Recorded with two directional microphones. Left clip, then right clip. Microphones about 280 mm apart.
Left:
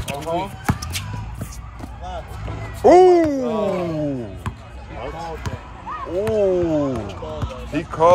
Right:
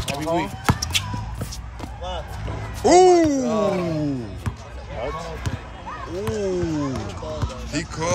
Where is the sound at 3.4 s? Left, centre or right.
Right.